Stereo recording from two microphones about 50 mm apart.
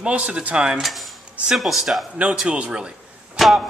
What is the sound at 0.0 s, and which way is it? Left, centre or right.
Speech, right.